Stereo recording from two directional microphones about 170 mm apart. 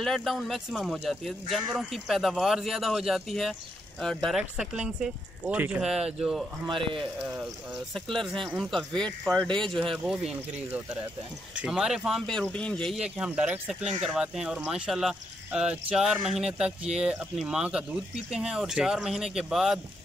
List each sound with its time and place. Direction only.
0.0 s speech: centre (ahead or behind)
6.7 s speech: 30° right (ahead or behind)
7.9 s speech: centre (ahead or behind)
11.5 s speech: 5° right (ahead or behind)